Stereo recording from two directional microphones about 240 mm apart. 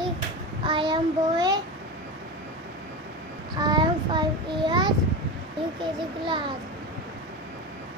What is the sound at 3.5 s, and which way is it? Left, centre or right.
Child singing, centre.